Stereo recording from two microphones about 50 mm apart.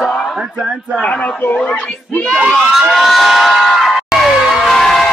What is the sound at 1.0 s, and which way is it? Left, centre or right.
Speech, left.